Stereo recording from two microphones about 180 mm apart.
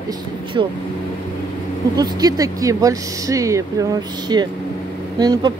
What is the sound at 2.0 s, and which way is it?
Speech, 20° right (ahead or behind).